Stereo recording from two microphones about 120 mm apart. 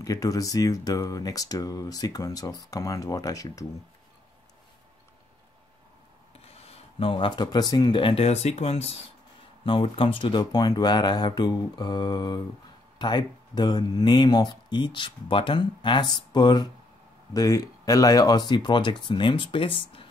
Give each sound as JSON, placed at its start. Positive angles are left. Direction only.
{"t": 0.0, "sound": "speech", "side_deg": 30}
{"t": 6.3, "sound": "speech", "side_deg": 55}
{"t": 9.7, "sound": "speech", "side_deg": 45}